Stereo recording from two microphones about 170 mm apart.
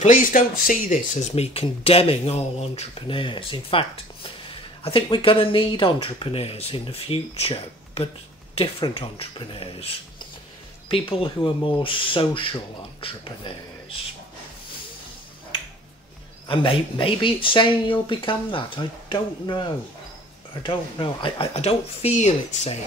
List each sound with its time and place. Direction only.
0.0 s speech: 50° left (ahead or behind); by 13.9 s 30° left (ahead or behind)
15.5 s finger snapping: 30° left (ahead or behind)
16.4 s speech: 30° left (ahead or behind)